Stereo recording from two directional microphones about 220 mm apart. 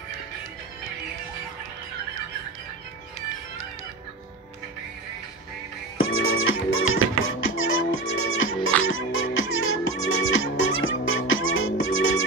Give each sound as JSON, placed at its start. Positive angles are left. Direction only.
{"t": 5.9, "sound": "music", "side_deg": 65}